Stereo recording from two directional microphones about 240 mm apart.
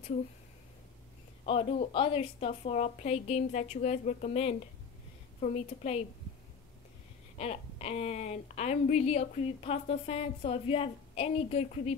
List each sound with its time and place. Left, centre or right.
1.4 s speech: left
7.3 s speech: left